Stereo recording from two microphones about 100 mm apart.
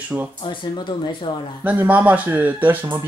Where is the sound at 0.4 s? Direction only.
55° left (ahead or behind).